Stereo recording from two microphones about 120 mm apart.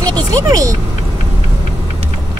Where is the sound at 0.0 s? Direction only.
30° right (ahead or behind).